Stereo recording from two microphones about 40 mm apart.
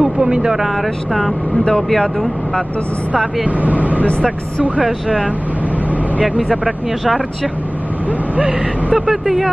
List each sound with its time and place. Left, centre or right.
0.3 s speech: centre
1.6 s speech: left
3.4 s speech: right
8.5 s speech: centre
9.1 s speech: centre